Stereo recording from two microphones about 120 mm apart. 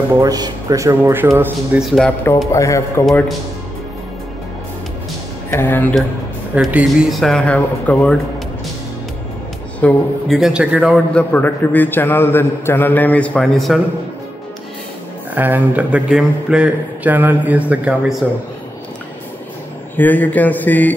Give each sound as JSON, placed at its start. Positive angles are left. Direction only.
{"t": 0.1, "sound": "speech", "side_deg": -30}
{"t": 1.8, "sound": "speech", "side_deg": 0}
{"t": 2.5, "sound": "a man's voice", "side_deg": 25}
{"t": 5.5, "sound": "a man's voice", "side_deg": 15}
{"t": 6.7, "sound": "speech", "side_deg": -5}
{"t": 9.8, "sound": "a man's voice", "side_deg": 10}
{"t": 10.3, "sound": "a man's voice", "side_deg": -5}
{"t": 11.1, "sound": "a man's voice", "side_deg": 15}
{"t": 15.3, "sound": "a man's voice", "side_deg": -15}
{"t": 20.0, "sound": "a man's voice", "side_deg": 15}